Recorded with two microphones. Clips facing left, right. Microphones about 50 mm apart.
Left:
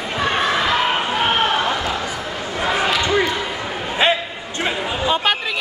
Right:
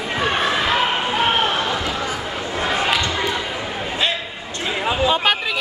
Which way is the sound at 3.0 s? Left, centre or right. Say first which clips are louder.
Left 4 dB; left.